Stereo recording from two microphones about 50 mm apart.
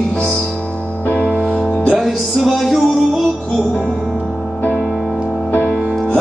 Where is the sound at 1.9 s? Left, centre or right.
Centre.